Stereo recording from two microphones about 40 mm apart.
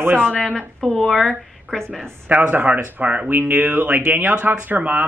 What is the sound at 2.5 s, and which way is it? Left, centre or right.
Speech, right.